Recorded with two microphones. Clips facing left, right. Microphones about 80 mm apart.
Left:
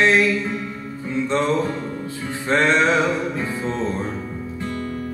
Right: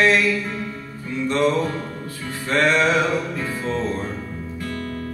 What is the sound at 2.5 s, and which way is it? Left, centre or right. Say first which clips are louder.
Music: left 1 dB; left.